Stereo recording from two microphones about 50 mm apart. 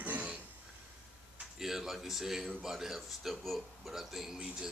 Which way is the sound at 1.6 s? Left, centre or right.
Centre.